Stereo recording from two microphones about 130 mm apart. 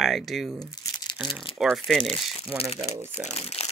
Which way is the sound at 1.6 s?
Centre (ahead or behind).